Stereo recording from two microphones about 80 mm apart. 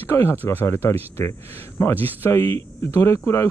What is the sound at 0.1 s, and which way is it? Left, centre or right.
Speech, left.